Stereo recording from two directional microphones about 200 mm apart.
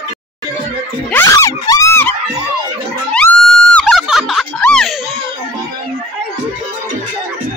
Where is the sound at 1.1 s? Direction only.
10° left (ahead or behind).